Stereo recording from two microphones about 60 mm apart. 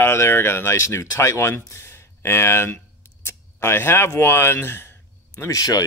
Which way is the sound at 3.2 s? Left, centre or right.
Left.